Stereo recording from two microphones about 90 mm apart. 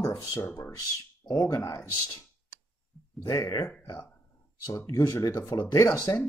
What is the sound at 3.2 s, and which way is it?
Speech, 40° left (ahead or behind).